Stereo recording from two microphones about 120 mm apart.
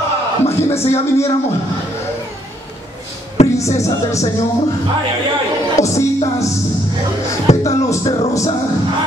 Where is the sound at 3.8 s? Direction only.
25° left (ahead or behind).